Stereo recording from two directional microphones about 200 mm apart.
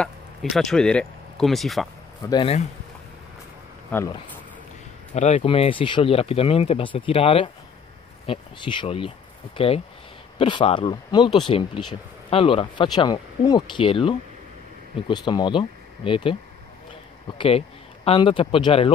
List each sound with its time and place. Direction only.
0.0 s speech: centre (ahead or behind)
2.2 s speech: 25° left (ahead or behind)
3.9 s speech: 15° left (ahead or behind)
5.1 s speech: 35° left (ahead or behind)
17.4 s speech: 30° left (ahead or behind)